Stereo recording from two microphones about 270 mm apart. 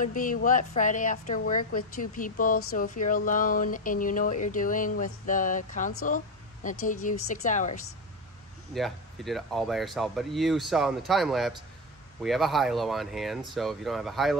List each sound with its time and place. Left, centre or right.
0.0 s speech: left
6.0 s a sound: left
6.9 s speech: left
8.7 s speech: centre